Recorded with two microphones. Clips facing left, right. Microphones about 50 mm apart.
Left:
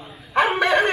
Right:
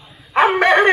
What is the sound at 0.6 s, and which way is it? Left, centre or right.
Bow-wow, right.